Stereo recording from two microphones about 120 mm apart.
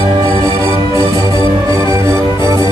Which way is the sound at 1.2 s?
25° right (ahead or behind).